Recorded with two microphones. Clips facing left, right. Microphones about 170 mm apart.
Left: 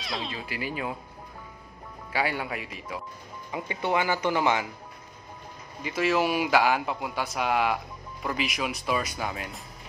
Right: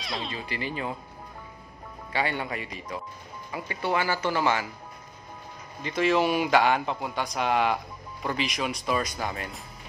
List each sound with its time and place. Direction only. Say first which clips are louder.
0.0 s speech: even; centre (ahead or behind)
2.1 s speech: even; 5° left (ahead or behind)
3.5 s speech: left 1 dB; 20° left (ahead or behind)
5.8 s speech: right 1 dB; 5° left (ahead or behind)